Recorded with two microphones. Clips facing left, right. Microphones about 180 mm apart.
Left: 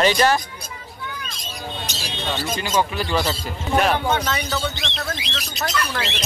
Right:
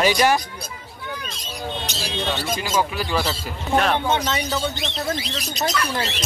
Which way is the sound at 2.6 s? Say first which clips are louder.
Left 1 dB; 5° right (ahead or behind).